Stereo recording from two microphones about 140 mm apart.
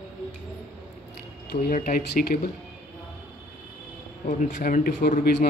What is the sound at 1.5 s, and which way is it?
Speech, 85° left.